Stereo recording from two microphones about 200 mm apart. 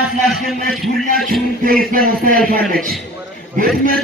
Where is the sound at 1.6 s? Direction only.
45° right (ahead or behind).